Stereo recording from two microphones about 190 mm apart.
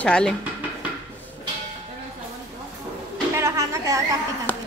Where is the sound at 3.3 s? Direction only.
15° right (ahead or behind).